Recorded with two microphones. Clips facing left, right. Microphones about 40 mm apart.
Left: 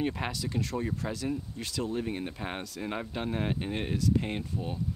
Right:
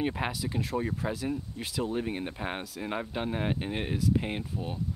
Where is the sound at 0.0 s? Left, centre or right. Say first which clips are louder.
Right 1 dB; centre.